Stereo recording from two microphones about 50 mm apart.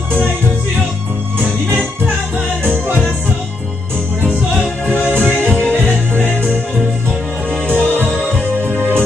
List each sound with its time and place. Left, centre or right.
4.8 s music: left
7.6 s music: right